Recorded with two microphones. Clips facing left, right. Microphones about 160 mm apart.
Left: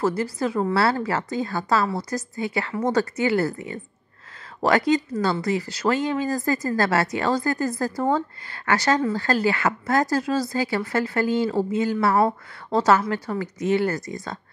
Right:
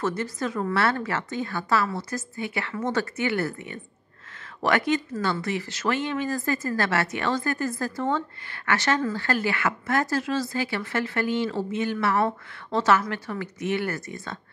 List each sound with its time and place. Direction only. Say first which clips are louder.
0.0 s a woman's voice: left 4 dB; 30° left (ahead or behind)
4.6 s a woman's voice: left 4 dB; 35° left (ahead or behind)